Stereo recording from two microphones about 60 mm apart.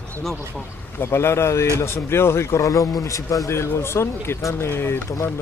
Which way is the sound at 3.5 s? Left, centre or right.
Left.